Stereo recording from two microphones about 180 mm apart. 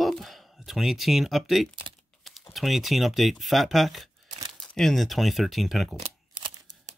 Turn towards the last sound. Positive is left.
turn(degrees=-30)  # may be behind; listen again after turning